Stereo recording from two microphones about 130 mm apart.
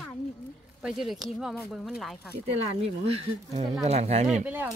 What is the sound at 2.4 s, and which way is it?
Speech, 55° right (ahead or behind).